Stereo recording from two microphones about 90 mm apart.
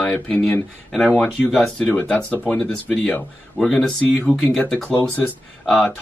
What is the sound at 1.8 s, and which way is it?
Speech, 15° left (ahead or behind).